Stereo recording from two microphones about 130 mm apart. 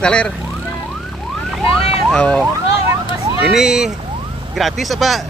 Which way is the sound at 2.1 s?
5° left (ahead or behind).